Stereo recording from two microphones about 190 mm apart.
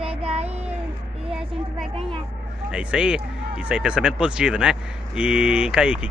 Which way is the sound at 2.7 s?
5° right (ahead or behind).